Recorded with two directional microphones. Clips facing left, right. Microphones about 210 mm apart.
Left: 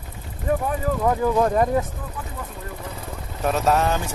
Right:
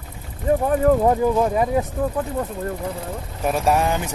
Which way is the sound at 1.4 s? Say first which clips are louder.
Even; 5° right (ahead or behind).